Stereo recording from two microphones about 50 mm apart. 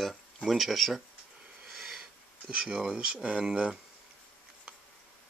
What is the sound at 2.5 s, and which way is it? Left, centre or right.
Speech, centre.